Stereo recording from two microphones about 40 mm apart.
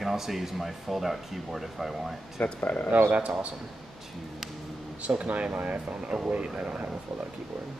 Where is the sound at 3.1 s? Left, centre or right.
Right.